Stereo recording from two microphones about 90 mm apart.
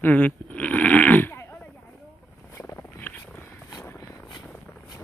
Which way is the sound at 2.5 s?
30° left (ahead or behind).